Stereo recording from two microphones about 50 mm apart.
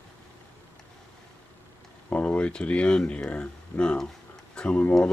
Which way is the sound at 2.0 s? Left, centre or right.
Left.